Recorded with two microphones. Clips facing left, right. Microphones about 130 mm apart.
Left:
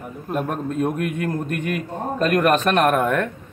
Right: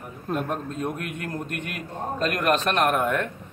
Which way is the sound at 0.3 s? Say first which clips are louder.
Left 3 dB; 15° left (ahead or behind).